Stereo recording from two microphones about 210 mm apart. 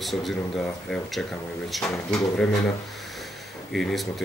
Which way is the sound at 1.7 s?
Centre (ahead or behind).